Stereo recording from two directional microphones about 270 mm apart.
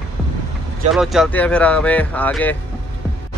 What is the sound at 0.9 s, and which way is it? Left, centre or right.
Speech, centre.